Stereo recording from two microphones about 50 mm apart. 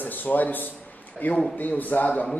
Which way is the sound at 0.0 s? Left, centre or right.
Left.